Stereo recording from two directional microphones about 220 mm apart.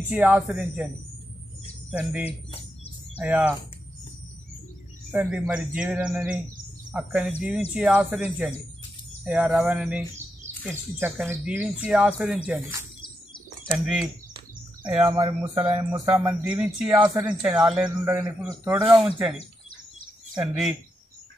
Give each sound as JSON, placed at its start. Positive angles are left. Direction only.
{"t": 0.1, "sound": "speech", "side_deg": -5}
{"t": 1.9, "sound": "speech", "side_deg": -5}
{"t": 2.2, "sound": "bird", "side_deg": 25}
{"t": 3.2, "sound": "speech", "side_deg": -5}
{"t": 5.1, "sound": "speech", "side_deg": -5}
{"t": 14.9, "sound": "speech", "side_deg": -10}
{"t": 20.3, "sound": "speech", "side_deg": 0}